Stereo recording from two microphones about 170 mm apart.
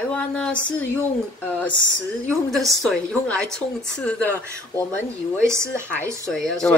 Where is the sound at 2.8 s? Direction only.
5° left (ahead or behind).